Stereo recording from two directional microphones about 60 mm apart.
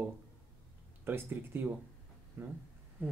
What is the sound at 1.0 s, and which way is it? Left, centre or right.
Speech, right.